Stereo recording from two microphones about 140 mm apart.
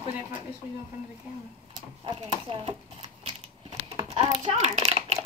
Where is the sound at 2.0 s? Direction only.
35° right (ahead or behind).